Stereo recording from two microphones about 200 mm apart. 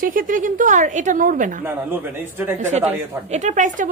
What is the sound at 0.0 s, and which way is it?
A woman's voice, 45° right (ahead or behind).